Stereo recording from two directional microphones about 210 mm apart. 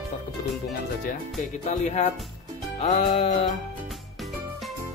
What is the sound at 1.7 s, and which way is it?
Speech, 35° left (ahead or behind).